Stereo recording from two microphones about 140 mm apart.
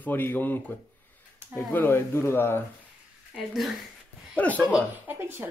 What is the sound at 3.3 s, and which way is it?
Speech, centre (ahead or behind).